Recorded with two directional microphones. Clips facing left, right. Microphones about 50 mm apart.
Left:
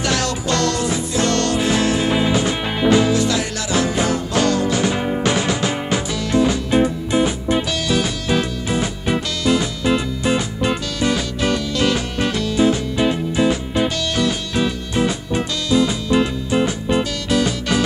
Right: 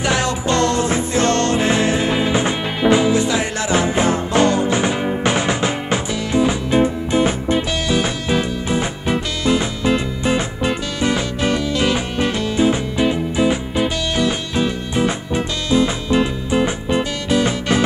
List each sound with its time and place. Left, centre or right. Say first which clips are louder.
0.0 s music: right 2 dB; right
11.1 s music: right 1 dB; right
17.3 s music: right 2 dB; right